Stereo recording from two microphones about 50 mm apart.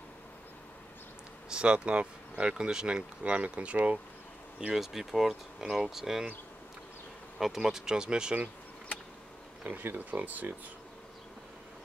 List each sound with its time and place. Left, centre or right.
1.5 s speech: centre
3.3 s speech: right
4.7 s speech: centre
7.3 s speech: centre
9.7 s speech: right